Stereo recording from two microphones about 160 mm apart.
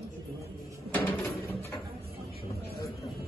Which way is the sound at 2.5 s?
75° right (ahead or behind).